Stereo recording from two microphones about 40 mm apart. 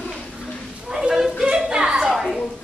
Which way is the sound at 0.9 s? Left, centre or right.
Centre.